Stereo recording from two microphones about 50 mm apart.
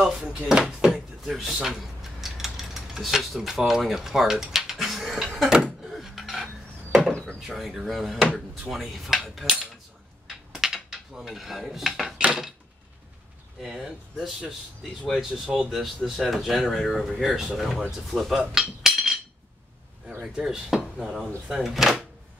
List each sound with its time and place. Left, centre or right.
0.0 s speech: centre
1.2 s mechanisms: centre
5.9 s a sound: centre
6.4 s wood: centre
7.1 s a sound: centre
7.4 s speech: centre
10.2 s dishes: centre
13.6 s speech: centre
21.0 s speech: centre